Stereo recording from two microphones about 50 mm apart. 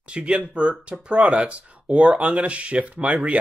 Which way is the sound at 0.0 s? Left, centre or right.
Right.